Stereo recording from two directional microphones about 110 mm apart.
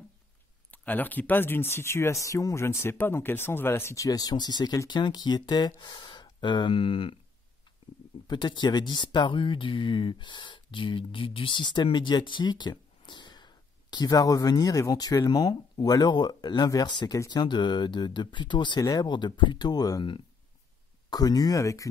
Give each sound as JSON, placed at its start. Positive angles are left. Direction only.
{"t": 0.7, "sound": "speech", "side_deg": 15}
{"t": 8.3, "sound": "speech", "side_deg": 40}